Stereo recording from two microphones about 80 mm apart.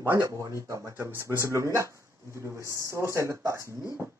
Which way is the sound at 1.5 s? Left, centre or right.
Right.